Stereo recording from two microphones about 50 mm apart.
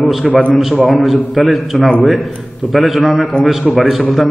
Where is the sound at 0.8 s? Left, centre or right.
Centre.